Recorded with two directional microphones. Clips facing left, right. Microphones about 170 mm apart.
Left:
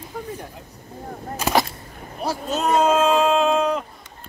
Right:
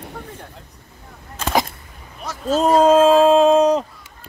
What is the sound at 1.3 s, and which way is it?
Gunshot, 10° left (ahead or behind).